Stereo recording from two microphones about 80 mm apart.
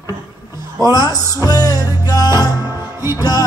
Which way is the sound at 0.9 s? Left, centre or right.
Left.